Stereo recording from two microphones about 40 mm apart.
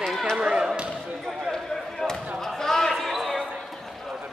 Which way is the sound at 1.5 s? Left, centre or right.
Centre.